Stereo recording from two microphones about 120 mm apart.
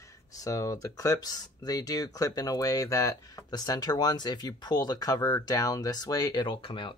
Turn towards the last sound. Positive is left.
turn(degrees=45)  # may be behind; listen again after turning